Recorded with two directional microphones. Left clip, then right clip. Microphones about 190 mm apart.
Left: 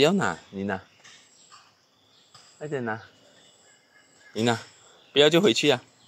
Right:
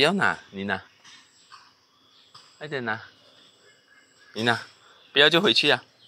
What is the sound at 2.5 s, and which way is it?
Speech, 20° left (ahead or behind).